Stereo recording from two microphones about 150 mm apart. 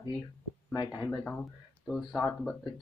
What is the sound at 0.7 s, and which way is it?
Speech, 30° left (ahead or behind).